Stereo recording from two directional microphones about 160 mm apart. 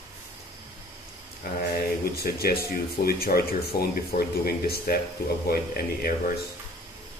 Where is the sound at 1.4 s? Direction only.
65° left (ahead or behind).